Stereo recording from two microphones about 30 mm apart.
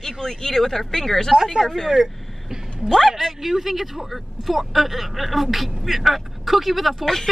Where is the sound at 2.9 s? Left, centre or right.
Centre.